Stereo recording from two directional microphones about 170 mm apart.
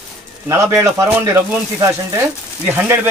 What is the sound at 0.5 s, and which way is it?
Speech, 15° right (ahead or behind).